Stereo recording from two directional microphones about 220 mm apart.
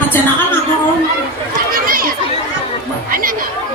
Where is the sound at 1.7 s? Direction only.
40° right (ahead or behind).